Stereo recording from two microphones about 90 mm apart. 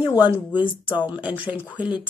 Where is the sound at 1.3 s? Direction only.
20° right (ahead or behind).